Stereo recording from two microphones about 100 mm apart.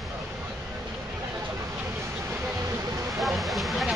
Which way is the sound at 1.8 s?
25° right (ahead or behind).